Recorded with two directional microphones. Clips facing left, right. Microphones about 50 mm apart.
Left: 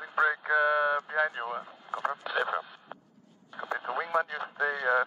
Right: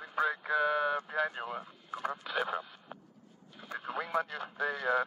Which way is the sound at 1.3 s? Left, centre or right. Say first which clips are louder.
Left 4 dB; left.